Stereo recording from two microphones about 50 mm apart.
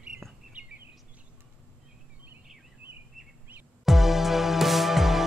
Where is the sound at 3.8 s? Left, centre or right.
Centre.